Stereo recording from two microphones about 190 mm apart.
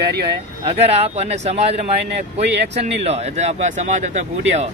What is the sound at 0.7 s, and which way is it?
Speech, 35° right (ahead or behind).